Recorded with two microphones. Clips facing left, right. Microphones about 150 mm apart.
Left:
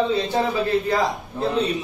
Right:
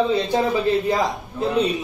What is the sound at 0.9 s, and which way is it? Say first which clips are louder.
Speech: even; 15° right (ahead or behind).